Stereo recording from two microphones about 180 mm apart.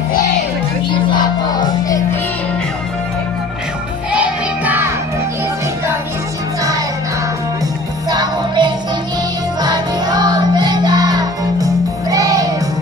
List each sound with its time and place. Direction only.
0.8 s music: 25° left (ahead or behind)
4.1 s music: 10° right (ahead or behind)
8.1 s music: 25° right (ahead or behind)